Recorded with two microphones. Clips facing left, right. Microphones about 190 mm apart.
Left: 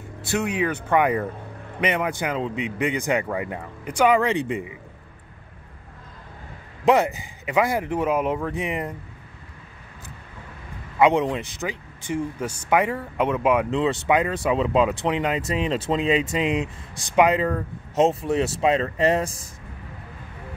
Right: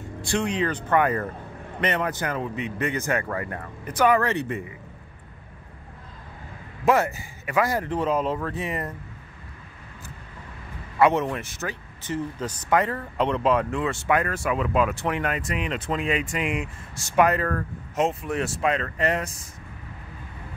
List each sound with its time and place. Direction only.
0.2 s speech: 5° left (ahead or behind)
6.8 s speech: 15° left (ahead or behind)
11.0 s speech: 15° left (ahead or behind)
17.9 s speech: 25° left (ahead or behind)